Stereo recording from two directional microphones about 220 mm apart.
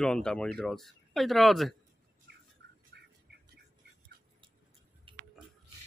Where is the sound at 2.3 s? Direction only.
50° right (ahead or behind).